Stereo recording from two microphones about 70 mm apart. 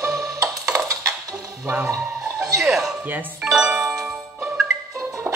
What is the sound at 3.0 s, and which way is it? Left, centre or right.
Music, right.